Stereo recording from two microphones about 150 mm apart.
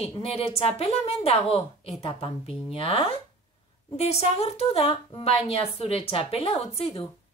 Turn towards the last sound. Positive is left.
turn(degrees=40)  # may be behind; listen again after turning